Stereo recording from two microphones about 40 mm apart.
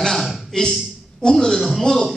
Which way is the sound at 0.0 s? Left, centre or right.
Centre.